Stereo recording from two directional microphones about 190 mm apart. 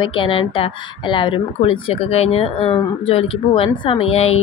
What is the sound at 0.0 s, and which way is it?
A woman's voice, 25° left (ahead or behind).